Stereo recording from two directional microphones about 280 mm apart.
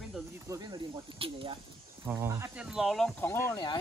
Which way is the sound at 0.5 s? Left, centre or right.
Centre.